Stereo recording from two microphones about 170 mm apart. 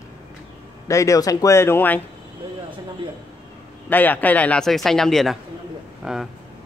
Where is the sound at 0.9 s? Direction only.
20° left (ahead or behind).